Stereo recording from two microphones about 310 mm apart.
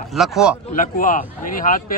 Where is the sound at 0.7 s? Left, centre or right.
Left.